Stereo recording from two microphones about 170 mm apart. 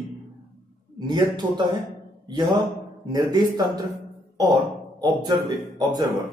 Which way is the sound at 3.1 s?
25° right (ahead or behind).